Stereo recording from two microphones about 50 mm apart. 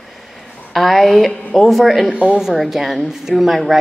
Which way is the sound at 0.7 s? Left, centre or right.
Centre.